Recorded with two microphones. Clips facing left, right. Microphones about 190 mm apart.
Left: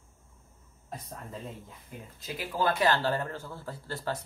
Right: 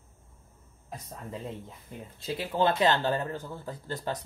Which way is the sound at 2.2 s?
25° right (ahead or behind).